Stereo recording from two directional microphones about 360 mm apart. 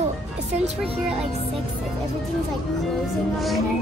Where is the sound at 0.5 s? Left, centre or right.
Centre.